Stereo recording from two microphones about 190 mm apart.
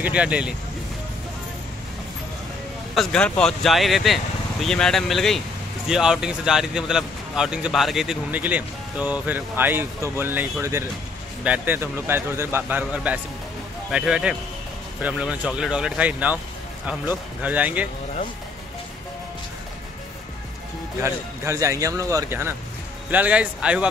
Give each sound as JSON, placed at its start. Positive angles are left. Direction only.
{"t": 0.0, "sound": "speech", "side_deg": -5}
{"t": 2.9, "sound": "speech", "side_deg": 0}
{"t": 17.4, "sound": "speech", "side_deg": -10}
{"t": 21.0, "sound": "speech", "side_deg": -15}